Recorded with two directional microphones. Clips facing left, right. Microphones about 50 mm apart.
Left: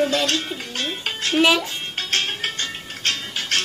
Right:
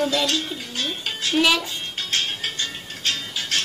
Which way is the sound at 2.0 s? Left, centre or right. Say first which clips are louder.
Left 2 dB; left.